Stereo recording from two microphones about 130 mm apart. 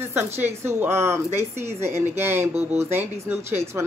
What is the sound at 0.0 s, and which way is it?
Speech, 20° right (ahead or behind).